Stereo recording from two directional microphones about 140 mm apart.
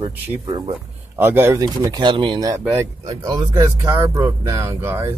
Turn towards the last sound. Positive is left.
turn(degrees=-20)  # may be behind; listen again after turning